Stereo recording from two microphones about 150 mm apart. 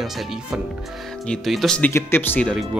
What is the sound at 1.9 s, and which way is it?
Speech, 15° left (ahead or behind).